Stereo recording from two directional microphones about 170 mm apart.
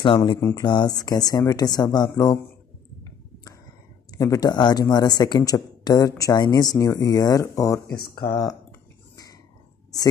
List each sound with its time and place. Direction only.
0.0 s speech: 25° left (ahead or behind)
0.4 s speech: 15° left (ahead or behind)
0.7 s speech: 25° left (ahead or behind)
4.1 s speech: 20° left (ahead or behind)
8.1 s speech: 60° left (ahead or behind)